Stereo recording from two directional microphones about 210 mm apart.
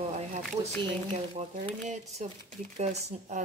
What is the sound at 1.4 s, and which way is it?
Speech, 30° right (ahead or behind).